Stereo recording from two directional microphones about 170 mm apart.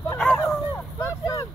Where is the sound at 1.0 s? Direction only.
15° left (ahead or behind).